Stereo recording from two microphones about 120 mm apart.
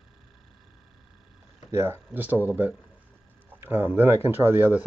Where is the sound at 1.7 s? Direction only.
20° right (ahead or behind).